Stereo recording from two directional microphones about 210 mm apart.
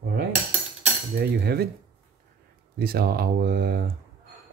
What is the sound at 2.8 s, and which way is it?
Speech, 45° right (ahead or behind).